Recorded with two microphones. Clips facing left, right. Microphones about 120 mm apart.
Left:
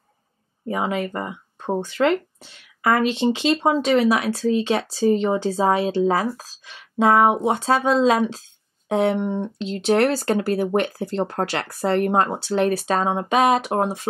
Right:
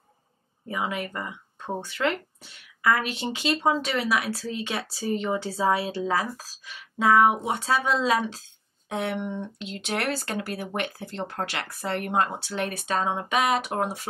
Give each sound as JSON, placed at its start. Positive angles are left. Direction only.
{"t": 0.7, "sound": "speech", "side_deg": 35}
{"t": 8.0, "sound": "speech", "side_deg": 25}
{"t": 8.8, "sound": "speech", "side_deg": 35}